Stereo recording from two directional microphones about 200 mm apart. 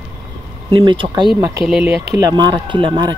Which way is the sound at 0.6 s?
25° right (ahead or behind).